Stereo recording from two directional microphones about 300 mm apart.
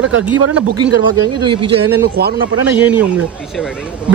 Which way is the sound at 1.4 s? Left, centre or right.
Centre.